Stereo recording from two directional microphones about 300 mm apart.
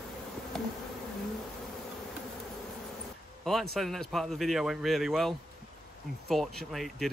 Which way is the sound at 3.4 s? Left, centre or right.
Centre.